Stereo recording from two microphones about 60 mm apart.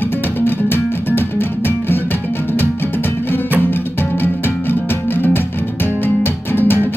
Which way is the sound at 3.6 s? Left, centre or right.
Left.